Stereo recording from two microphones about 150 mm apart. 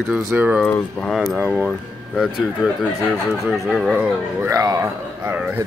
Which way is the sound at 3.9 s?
10° right (ahead or behind).